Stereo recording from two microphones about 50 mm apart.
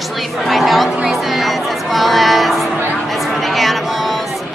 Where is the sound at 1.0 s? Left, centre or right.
Centre.